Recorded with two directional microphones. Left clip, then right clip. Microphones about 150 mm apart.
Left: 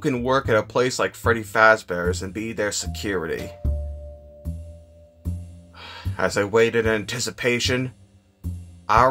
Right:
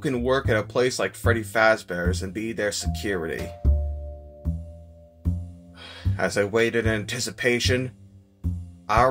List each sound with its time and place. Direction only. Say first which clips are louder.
0.0 s speech: left 2 dB; 20° left (ahead or behind)
5.8 s speech: left 2 dB; 20° left (ahead or behind)
8.9 s quack: left 3 dB; 20° left (ahead or behind)